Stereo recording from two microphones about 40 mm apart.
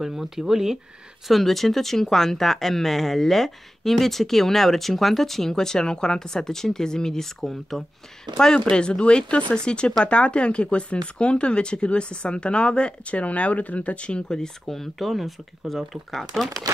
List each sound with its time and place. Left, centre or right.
0.0 s speech: centre
1.2 s speech: centre
8.5 s speech: left
14.3 s speech: centre